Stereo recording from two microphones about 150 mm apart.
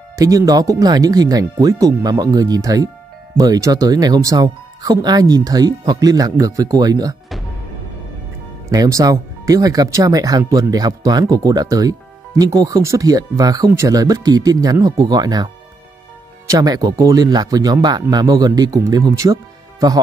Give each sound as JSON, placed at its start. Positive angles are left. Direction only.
{"t": 0.1, "sound": "speech", "side_deg": -20}
{"t": 8.6, "sound": "speech", "side_deg": -25}